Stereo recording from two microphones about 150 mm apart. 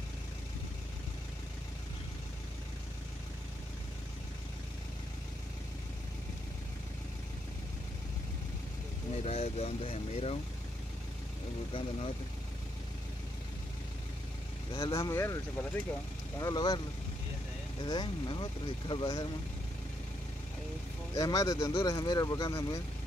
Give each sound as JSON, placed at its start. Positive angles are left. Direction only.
{"t": 9.1, "sound": "speech", "side_deg": 45}
{"t": 14.7, "sound": "speech", "side_deg": 40}
{"t": 15.0, "sound": "speech", "side_deg": 20}
{"t": 17.8, "sound": "speech", "side_deg": 30}
{"t": 21.1, "sound": "speech", "side_deg": 25}